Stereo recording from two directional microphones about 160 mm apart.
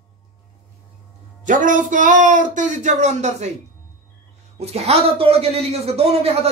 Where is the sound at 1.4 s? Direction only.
55° right (ahead or behind).